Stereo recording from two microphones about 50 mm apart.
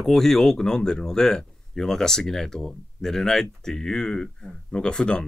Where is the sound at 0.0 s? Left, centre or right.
Centre.